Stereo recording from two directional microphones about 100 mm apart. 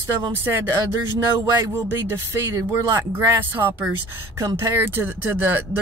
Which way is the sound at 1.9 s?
25° right (ahead or behind).